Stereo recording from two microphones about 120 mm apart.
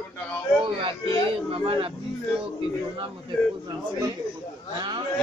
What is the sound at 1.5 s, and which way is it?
Speech, 50° right (ahead or behind).